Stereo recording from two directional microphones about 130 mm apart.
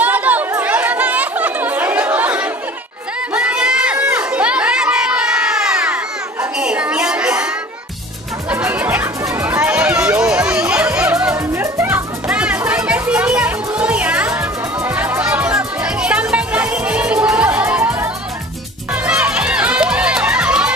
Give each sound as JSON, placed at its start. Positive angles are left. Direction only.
{"t": 0.0, "sound": "chatter", "side_deg": -10}
{"t": 3.3, "sound": "crowd", "side_deg": -5}
{"t": 6.6, "sound": "a sound", "side_deg": -10}
{"t": 8.5, "sound": "music", "side_deg": -10}
{"t": 12.3, "sound": "music", "side_deg": -10}